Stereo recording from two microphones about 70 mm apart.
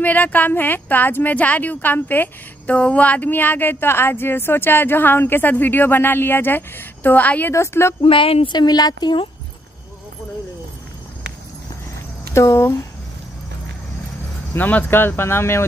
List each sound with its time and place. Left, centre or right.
0.0 s speech: left
7.5 s speech: left
8.5 s speech: left
12.4 s speech: left
14.5 s speech: left